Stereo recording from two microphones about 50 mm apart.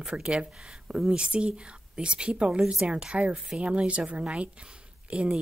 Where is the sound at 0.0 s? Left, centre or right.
Centre.